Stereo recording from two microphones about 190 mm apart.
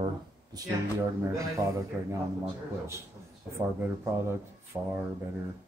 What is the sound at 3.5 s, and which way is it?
Speech, 15° right (ahead or behind).